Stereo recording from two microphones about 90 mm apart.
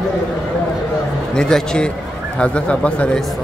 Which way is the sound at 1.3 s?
5° left (ahead or behind).